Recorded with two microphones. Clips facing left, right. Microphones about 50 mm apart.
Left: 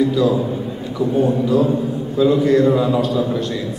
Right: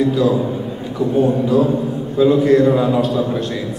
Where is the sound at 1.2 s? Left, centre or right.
Centre.